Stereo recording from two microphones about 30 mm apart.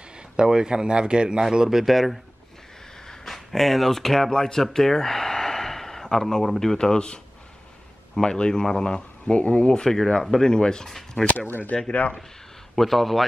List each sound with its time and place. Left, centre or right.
0.4 s speech: right
1.5 s speech: centre
1.9 s speech: centre
3.3 s speech: centre
4.3 s speech: left
4.7 s gasp: centre
6.8 s speech: left
8.3 s speech: left
9.3 s speech: left
9.6 s speech: left
9.8 s speech: centre
11.2 s speech: left
11.9 s speech: left
12.7 s speech: centre